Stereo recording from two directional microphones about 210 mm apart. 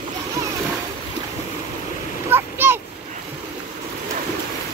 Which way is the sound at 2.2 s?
10° right (ahead or behind).